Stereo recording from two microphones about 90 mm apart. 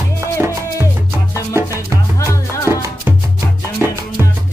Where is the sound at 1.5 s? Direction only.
30° right (ahead or behind).